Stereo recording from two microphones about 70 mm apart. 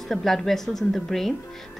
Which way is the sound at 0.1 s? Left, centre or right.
Centre.